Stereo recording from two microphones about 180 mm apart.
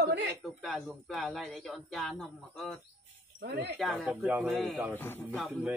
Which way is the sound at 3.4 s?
70° right (ahead or behind).